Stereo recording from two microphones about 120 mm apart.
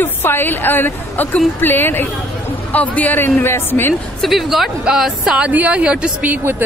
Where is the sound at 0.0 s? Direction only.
20° left (ahead or behind).